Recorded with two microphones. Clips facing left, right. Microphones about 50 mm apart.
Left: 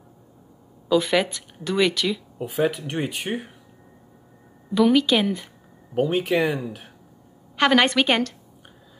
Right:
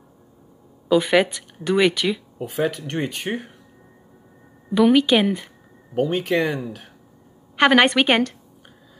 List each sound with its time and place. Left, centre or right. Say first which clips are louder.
0.8 s a woman's voice: right 3 dB; centre
2.4 s speech: even; centre
4.6 s a woman's voice: right 2 dB; centre
5.9 s speech: even; centre
7.5 s a woman's voice: right 3 dB; centre